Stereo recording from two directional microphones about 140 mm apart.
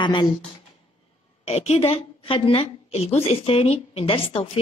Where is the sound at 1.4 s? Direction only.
50° left (ahead or behind).